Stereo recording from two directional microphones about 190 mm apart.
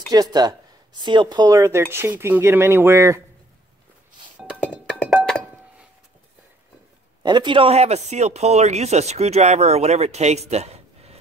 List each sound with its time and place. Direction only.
0.1 s speech: 20° right (ahead or behind)
4.6 s music: 5° left (ahead or behind)
7.2 s speech: 25° right (ahead or behind)